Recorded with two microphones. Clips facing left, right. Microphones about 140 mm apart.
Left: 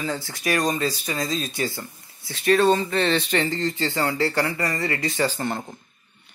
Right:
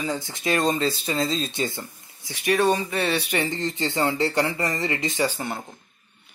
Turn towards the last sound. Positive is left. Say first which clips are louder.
# left 1 dB
turn(degrees=-5)  # may be behind; listen again after turning